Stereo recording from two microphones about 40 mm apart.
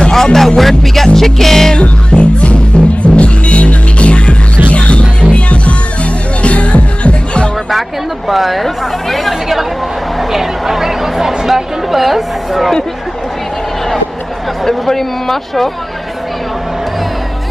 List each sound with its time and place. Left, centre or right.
0.1 s music: centre
1.8 s music: left
8.3 s speech: centre
10.1 s a sound: centre
14.6 s speech: centre